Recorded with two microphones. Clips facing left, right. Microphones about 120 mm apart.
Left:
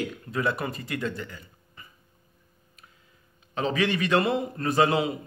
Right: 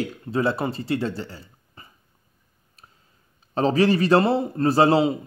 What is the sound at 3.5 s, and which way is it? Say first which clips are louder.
Speech: right 7 dB; 35° right (ahead or behind).